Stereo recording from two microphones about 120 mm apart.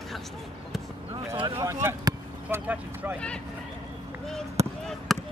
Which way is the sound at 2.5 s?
20° right (ahead or behind).